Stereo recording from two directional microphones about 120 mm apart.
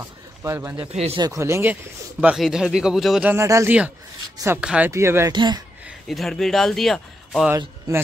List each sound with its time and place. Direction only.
0.0 s a sound: 20° right (ahead or behind)
0.7 s speech: 60° right (ahead or behind)
1.3 s speech: 25° right (ahead or behind); by 3.3 s centre (ahead or behind)
3.3 s speech: 25° right (ahead or behind)
4.6 s speech: 10° right (ahead or behind)
4.9 s speech: 25° right (ahead or behind)
5.3 s speech: 40° right (ahead or behind)
5.9 s speech: centre (ahead or behind)